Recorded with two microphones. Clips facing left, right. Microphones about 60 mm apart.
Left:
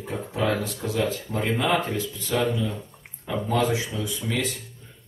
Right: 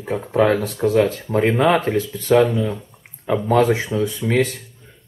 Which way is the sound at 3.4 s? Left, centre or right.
Right.